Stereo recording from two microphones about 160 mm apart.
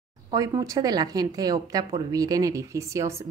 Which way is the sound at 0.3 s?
20° right (ahead or behind).